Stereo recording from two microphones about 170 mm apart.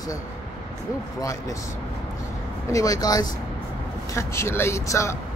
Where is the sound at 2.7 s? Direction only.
20° left (ahead or behind).